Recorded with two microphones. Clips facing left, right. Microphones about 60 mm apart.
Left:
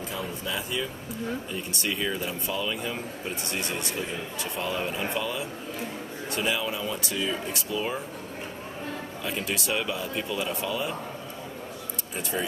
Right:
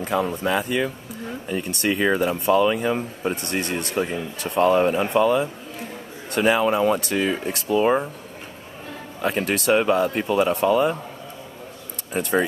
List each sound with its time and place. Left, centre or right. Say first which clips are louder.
0.0 s speech: right 10 dB; right
9.2 s speech: right 10 dB; right
12.1 s speech: right 10 dB; right